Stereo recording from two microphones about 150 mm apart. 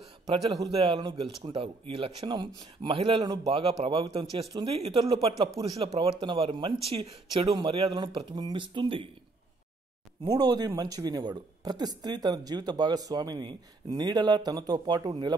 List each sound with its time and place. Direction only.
0.3 s speech: 30° right (ahead or behind)
10.3 s speech: 25° right (ahead or behind)